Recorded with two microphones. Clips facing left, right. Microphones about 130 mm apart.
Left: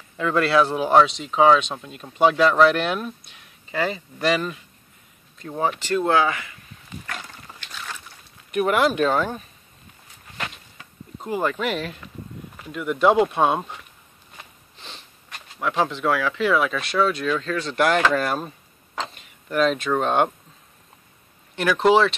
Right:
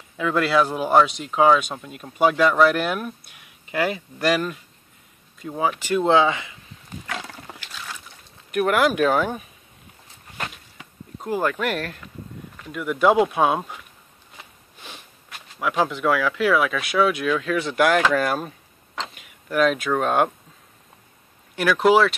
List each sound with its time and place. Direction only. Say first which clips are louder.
0.2 s speech: left 1 dB; 5° right (ahead or behind)
5.9 s speech: right 3 dB; 20° right (ahead or behind)
8.5 s speech: even; centre (ahead or behind)
11.1 s speech: right 1 dB; centre (ahead or behind)
21.5 s speech: even; 5° right (ahead or behind)